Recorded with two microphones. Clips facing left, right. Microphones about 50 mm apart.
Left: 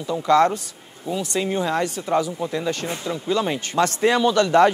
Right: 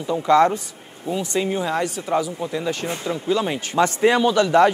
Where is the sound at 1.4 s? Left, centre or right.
Centre.